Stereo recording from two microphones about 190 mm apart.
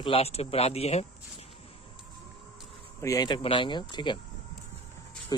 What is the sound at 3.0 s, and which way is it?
Speech, 20° left (ahead or behind).